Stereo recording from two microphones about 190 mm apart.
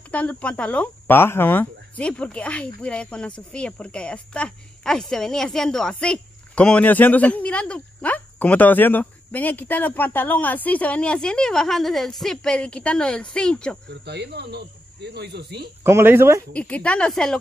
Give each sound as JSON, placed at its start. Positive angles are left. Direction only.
{"t": 0.1, "sound": "speech", "side_deg": 5}
{"t": 13.8, "sound": "speech", "side_deg": -60}
{"t": 15.8, "sound": "speech", "side_deg": -10}
{"t": 16.5, "sound": "speech", "side_deg": 5}